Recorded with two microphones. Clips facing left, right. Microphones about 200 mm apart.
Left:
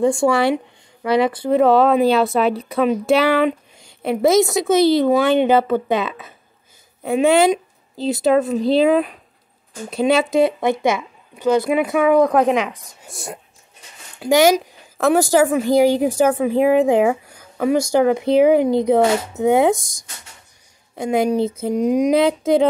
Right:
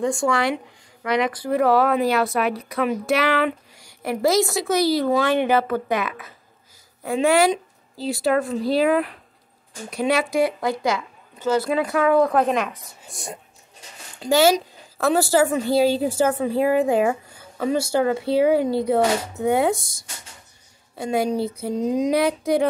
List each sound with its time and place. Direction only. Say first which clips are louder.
0.0 s a woman's voice: left 5 dB; 30° left (ahead or behind)
13.1 s speech: left 3 dB; centre (ahead or behind)
14.2 s speech: left 3 dB; 15° left (ahead or behind)